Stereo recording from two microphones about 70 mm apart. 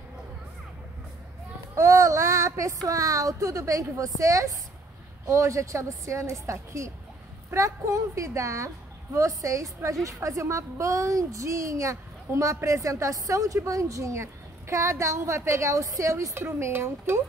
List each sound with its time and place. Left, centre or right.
1.8 s a woman's voice: right